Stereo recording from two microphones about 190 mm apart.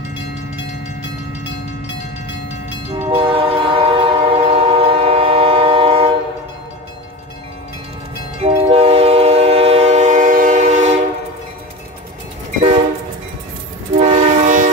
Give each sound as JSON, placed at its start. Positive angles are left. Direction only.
{"t": 0.6, "sound": "train", "side_deg": 65}
{"t": 3.1, "sound": "train", "side_deg": -25}
{"t": 8.4, "sound": "train", "side_deg": -30}
{"t": 12.4, "sound": "train", "side_deg": -40}
{"t": 13.9, "sound": "train", "side_deg": -40}